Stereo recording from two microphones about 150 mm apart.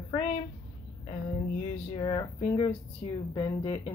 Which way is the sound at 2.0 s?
40° left (ahead or behind).